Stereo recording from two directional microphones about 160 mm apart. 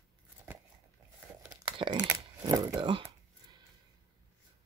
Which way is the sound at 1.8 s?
25° right (ahead or behind).